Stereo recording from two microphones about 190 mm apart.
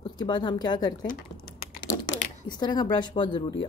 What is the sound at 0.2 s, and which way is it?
Speech, 25° left (ahead or behind).